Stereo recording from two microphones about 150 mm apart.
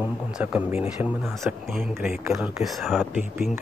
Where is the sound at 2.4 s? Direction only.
Centre (ahead or behind).